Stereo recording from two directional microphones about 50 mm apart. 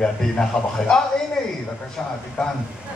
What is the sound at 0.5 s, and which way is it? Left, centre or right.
Speech, left.